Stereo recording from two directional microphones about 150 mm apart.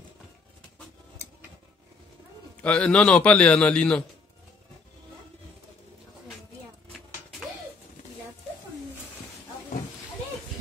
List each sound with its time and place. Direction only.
2.6 s a man's voice: 5° left (ahead or behind)